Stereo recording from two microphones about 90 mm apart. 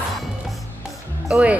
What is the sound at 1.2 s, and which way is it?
Speech, 10° right (ahead or behind).